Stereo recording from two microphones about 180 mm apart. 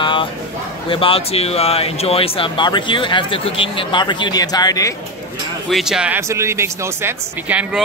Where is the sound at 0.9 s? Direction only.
30° left (ahead or behind).